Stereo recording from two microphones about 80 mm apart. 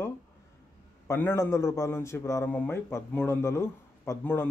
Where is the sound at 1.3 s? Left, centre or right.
Left.